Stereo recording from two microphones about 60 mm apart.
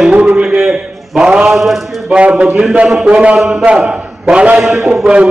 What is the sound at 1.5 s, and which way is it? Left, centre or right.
Speech, centre.